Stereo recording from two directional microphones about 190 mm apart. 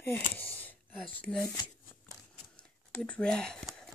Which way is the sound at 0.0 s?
10° left (ahead or behind).